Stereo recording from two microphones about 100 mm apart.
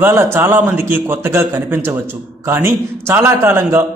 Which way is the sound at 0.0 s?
25° right (ahead or behind).